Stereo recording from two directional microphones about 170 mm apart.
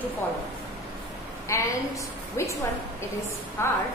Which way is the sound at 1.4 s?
15° left (ahead or behind).